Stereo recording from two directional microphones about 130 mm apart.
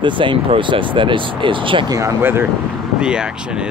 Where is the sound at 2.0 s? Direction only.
20° right (ahead or behind).